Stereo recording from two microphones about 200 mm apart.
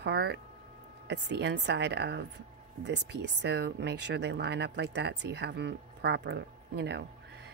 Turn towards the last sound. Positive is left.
turn(degrees=-60)  # may be behind; listen again after turning